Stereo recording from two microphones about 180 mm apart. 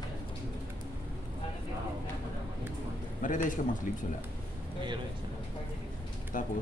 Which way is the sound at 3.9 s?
50° left (ahead or behind).